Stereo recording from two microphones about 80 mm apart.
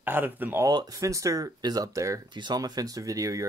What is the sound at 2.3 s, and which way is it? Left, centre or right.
Speech, right.